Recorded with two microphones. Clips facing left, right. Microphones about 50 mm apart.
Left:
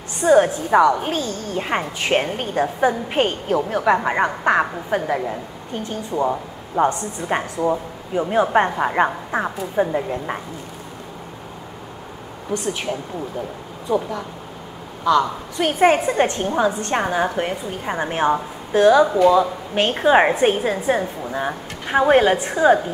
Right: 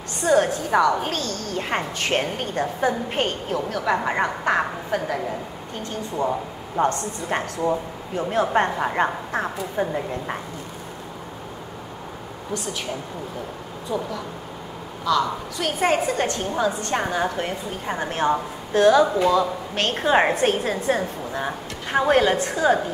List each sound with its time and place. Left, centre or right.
0.2 s a woman's voice: centre
13.9 s a woman's voice: left